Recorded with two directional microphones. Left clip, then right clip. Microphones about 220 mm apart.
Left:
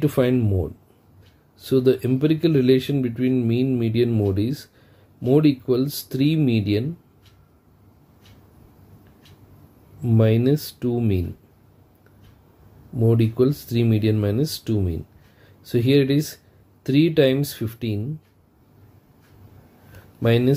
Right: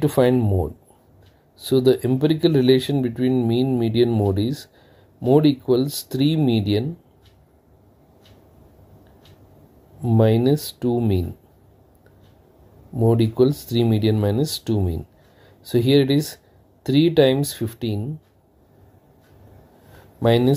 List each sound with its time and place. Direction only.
0.0 s speech: 15° right (ahead or behind)
10.0 s speech: 15° right (ahead or behind)
12.9 s speech: 15° right (ahead or behind)
20.2 s speech: 15° right (ahead or behind)